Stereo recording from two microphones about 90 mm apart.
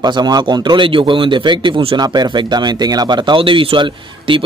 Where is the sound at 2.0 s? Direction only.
50° right (ahead or behind); by 4.4 s 70° right (ahead or behind).